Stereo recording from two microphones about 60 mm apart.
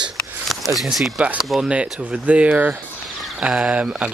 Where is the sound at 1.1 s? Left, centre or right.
Centre.